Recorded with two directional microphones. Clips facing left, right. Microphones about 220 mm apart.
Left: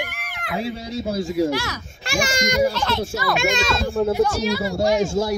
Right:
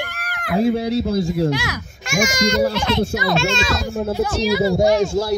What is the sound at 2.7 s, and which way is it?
Speech, 15° right (ahead or behind).